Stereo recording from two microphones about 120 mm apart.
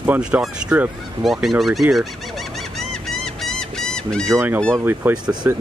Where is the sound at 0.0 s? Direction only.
10° right (ahead or behind); by 4.3 s 5° left (ahead or behind).